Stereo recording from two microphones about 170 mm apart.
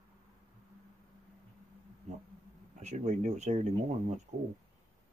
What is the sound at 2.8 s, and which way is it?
Speech, 40° right (ahead or behind).